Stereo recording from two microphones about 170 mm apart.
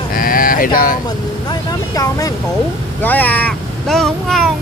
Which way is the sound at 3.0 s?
10° left (ahead or behind).